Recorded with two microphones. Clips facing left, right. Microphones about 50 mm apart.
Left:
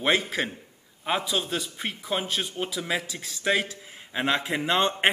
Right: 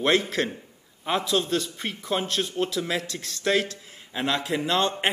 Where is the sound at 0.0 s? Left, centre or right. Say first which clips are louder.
Right 2 dB; centre.